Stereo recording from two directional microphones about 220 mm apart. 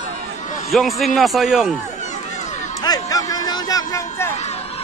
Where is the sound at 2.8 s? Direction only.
15° left (ahead or behind).